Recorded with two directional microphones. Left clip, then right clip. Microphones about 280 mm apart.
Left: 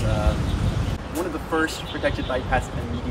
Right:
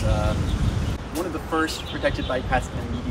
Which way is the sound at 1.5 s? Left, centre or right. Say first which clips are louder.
Left 1 dB; centre.